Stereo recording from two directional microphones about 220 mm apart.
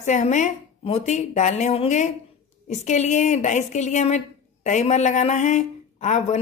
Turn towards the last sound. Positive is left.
turn(degrees=30)  # may be behind; listen again after turning